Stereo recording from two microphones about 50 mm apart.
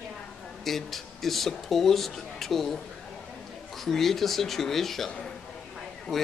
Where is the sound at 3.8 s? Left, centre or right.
Centre.